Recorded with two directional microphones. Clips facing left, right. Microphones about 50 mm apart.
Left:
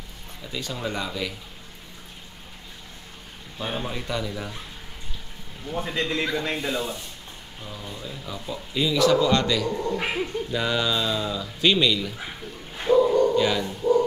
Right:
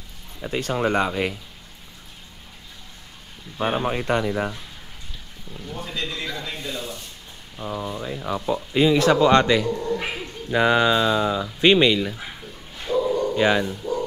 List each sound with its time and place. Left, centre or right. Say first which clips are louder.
0.4 s speech: right 8 dB; right
3.5 s speech: right 7 dB; right
5.7 s speech: left 4 dB; left
7.6 s speech: right 9 dB; right
9.8 s speech: left 1 dB; centre
10.5 s speech: right 9 dB; right
12.9 s bow-wow: left 5 dB; left
13.4 s speech: right 3 dB; right